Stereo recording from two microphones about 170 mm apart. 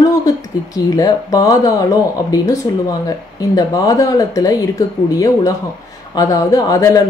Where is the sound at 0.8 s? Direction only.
20° left (ahead or behind).